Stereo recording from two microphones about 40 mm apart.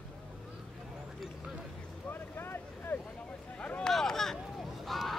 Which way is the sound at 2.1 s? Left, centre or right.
Left.